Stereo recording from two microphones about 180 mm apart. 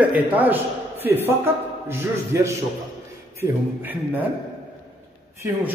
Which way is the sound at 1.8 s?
15° right (ahead or behind).